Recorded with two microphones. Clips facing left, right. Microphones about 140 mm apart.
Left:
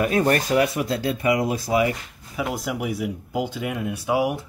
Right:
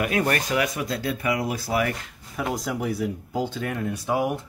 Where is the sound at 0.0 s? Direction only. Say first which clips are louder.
Left 4 dB; 30° left (ahead or behind).